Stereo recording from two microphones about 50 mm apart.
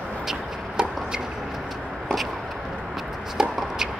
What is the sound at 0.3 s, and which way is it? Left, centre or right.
Chopping, centre.